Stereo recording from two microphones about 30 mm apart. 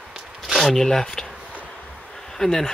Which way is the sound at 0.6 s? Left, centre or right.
Centre.